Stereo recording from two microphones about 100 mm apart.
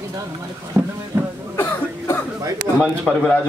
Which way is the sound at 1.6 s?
25° left (ahead or behind).